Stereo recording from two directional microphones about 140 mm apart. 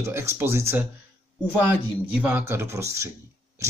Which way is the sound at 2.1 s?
10° right (ahead or behind).